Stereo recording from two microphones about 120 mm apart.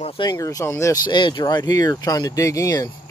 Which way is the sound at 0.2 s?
35° left (ahead or behind).